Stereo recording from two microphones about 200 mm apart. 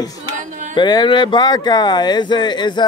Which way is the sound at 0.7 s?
20° left (ahead or behind).